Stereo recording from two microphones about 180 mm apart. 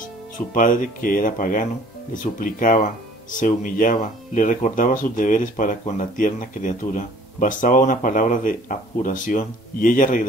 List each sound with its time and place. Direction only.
0.5 s speech: 50° left (ahead or behind)